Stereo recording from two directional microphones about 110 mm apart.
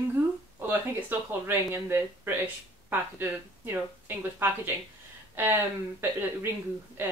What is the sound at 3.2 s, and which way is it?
Speech, 20° right (ahead or behind).